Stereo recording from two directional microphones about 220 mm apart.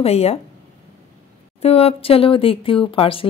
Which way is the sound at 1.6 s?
25° left (ahead or behind).